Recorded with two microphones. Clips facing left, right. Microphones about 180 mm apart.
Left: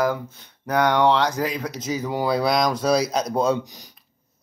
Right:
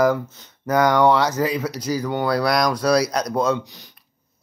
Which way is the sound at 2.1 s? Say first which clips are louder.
Even; 25° left (ahead or behind).